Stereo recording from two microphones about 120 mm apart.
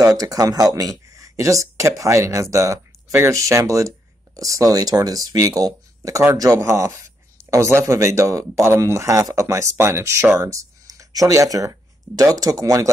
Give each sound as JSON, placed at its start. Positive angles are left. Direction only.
{"t": 0.0, "sound": "speech", "side_deg": -30}